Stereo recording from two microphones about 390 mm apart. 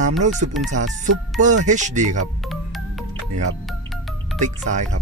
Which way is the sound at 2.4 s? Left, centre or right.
Centre.